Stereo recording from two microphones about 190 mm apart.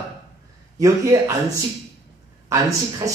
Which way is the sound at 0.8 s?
15° right (ahead or behind).